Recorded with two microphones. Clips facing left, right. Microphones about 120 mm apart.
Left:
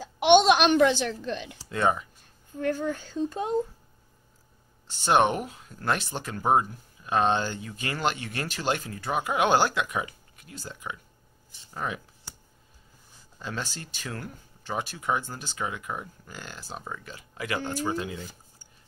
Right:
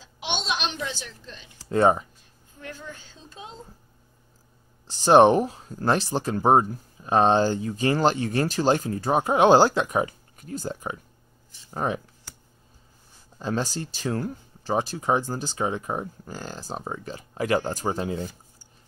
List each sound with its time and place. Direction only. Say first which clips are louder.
0.0 s speech: left 14 dB; 55° left (ahead or behind)
1.7 s speech: right 6 dB; 35° right (ahead or behind)
2.6 s speech: left 12 dB; 50° left (ahead or behind)
4.8 s speech: right 7 dB; 35° right (ahead or behind)
13.4 s speech: right 8 dB; 40° right (ahead or behind)